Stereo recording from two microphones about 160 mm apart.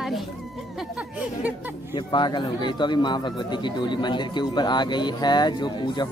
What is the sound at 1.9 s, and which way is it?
Speech, 30° left (ahead or behind).